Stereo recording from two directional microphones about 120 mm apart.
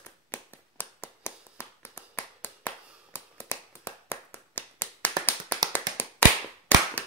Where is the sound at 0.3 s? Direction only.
15° left (ahead or behind).